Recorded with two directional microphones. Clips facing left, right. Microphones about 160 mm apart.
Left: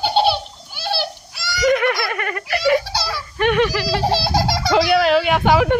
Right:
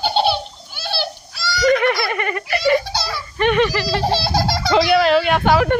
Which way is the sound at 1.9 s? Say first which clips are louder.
Right 2 dB; centre (ahead or behind).